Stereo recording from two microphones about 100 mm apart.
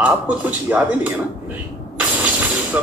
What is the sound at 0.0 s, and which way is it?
Speech, 15° right (ahead or behind).